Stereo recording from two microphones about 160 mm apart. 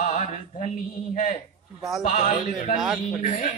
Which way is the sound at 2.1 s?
50° left (ahead or behind).